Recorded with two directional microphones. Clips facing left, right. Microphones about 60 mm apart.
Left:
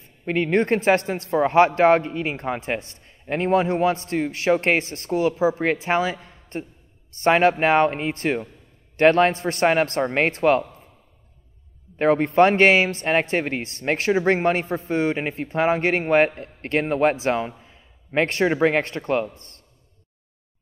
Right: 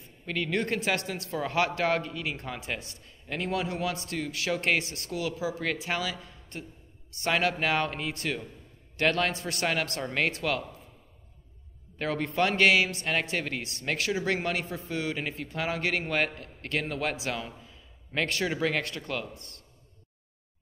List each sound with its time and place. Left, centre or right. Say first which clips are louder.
0.0 s a man's voice: left 9 dB; left
12.0 s a man's voice: left 11 dB; left